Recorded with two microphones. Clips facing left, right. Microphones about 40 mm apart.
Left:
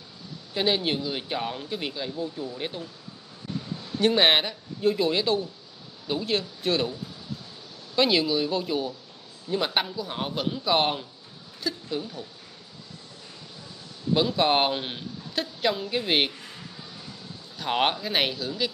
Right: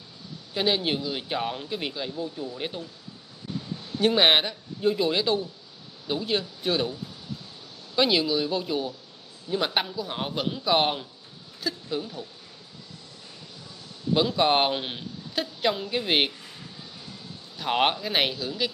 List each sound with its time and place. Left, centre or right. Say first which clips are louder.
0.6 s speech: even; centre
4.0 s a man's voice: even; centre
7.9 s a man's voice: even; centre
14.1 s speech: even; centre
17.6 s speech: right 1 dB; centre